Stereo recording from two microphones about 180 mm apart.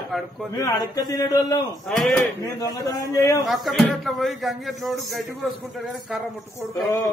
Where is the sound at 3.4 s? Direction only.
Centre (ahead or behind).